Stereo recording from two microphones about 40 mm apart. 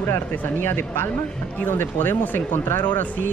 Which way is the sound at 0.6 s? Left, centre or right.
Left.